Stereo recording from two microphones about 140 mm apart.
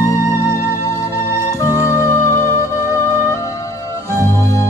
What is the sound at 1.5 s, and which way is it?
Music, 20° left (ahead or behind).